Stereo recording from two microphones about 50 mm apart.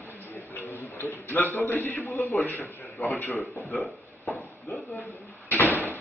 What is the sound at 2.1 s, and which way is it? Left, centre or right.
Speech, left.